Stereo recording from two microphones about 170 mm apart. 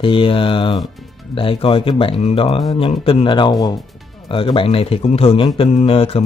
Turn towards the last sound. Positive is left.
turn(degrees=35)  # may be behind; listen again after turning